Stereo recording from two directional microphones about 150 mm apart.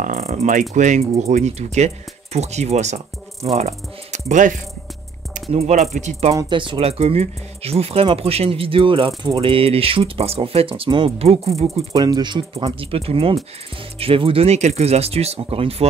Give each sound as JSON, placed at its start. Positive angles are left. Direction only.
{"t": 0.0, "sound": "speech", "side_deg": -50}
{"t": 5.5, "sound": "speech", "side_deg": -45}
{"t": 6.3, "sound": "speech", "side_deg": -35}
{"t": 11.9, "sound": "speech", "side_deg": -30}